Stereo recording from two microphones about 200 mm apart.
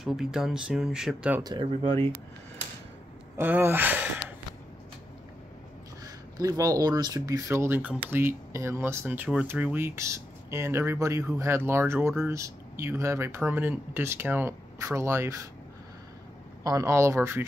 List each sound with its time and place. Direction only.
0.0 s speech: centre (ahead or behind)
1.4 s speech: 20° right (ahead or behind)
3.3 s speech: 10° right (ahead or behind)
6.0 s speech: 15° right (ahead or behind)
16.6 s speech: 15° right (ahead or behind)